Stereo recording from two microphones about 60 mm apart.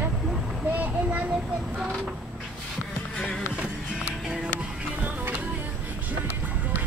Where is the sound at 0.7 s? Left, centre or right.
Right.